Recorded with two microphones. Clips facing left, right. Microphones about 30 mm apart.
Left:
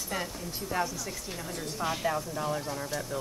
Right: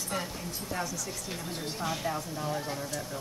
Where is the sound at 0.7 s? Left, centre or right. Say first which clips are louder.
Left 4 dB; centre.